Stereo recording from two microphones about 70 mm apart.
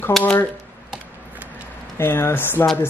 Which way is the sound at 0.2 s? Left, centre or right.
Left.